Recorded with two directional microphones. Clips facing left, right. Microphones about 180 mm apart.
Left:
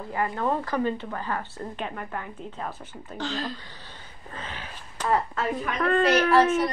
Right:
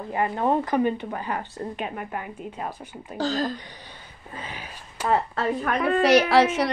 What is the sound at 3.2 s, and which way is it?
Speech, 40° right (ahead or behind).